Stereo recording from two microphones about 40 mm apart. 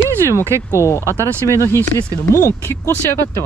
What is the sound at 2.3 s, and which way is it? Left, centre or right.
Speech, left.